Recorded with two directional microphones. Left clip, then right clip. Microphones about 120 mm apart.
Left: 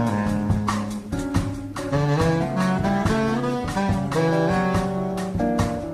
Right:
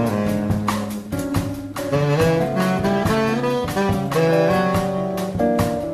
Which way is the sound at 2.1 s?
15° right (ahead or behind).